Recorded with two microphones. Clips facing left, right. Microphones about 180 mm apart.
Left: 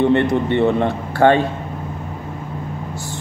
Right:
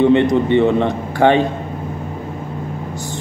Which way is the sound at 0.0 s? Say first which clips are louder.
Right 3 dB; 15° right (ahead or behind).